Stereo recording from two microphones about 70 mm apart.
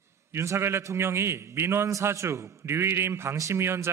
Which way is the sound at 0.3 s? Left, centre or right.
Right.